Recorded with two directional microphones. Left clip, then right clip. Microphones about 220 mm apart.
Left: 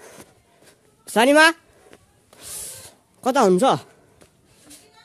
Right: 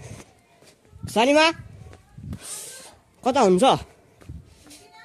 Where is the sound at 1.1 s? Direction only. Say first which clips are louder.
Left 3 dB; 20° left (ahead or behind).